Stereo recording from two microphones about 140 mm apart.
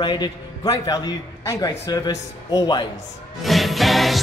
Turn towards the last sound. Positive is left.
turn(degrees=0)  # may be behind; listen again after turning